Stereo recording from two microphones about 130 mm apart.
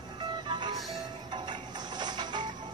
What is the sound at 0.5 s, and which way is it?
Music, 35° right (ahead or behind).